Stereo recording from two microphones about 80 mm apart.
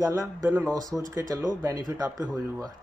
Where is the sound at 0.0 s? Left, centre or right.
Right.